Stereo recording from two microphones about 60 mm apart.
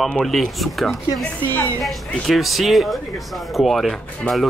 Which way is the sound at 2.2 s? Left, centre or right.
Centre.